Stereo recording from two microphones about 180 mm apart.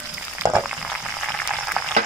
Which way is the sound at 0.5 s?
5° right (ahead or behind).